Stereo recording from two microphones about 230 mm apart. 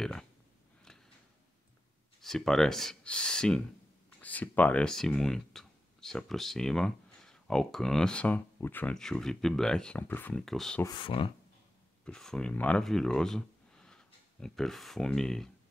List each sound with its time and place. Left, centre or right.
0.0 s a sound: centre
2.2 s speech: centre
10.8 s speech: centre
12.0 s speech: centre